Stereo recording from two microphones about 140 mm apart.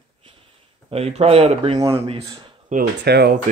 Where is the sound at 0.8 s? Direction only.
45° right (ahead or behind).